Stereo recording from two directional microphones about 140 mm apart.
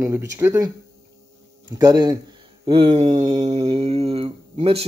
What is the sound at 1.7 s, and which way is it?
Speech, 30° right (ahead or behind).